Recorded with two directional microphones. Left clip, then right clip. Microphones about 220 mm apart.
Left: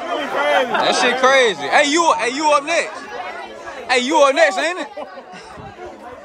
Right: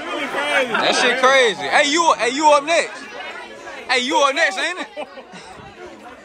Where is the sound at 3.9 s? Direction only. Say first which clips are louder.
Left 3 dB; 20° left (ahead or behind).